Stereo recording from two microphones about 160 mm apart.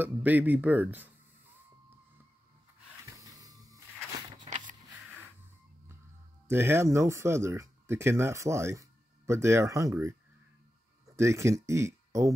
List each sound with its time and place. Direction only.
0.0 s speech: 10° right (ahead or behind)
3.2 s vehicle: 20° right (ahead or behind)
4.5 s a sound: 50° right (ahead or behind)
6.4 s speech: 15° right (ahead or behind)